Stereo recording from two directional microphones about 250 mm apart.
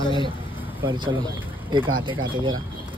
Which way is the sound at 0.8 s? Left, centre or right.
Centre.